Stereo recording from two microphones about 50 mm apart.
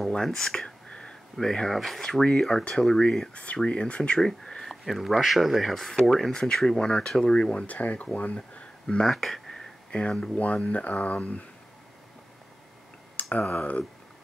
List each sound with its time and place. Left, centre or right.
0.0 s speech: centre
0.8 s a sound: centre
1.3 s speech: centre
3.6 s speech: left
4.2 s speech: centre
6.1 s speech: centre
7.6 s speech: left
8.8 s speech: centre
9.8 s speech: left
13.1 s a sound: left